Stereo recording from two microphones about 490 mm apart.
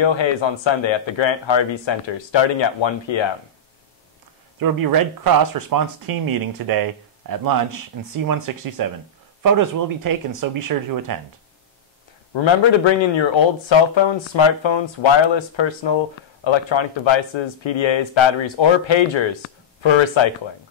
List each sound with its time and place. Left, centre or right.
0.0 s speech: left
4.6 s speech: right
12.4 s speech: left